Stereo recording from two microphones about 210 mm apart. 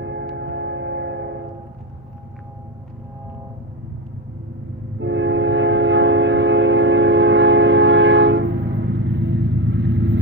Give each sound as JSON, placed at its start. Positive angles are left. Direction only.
{"t": 0.0, "sound": "train", "side_deg": -60}
{"t": 5.0, "sound": "train", "side_deg": -60}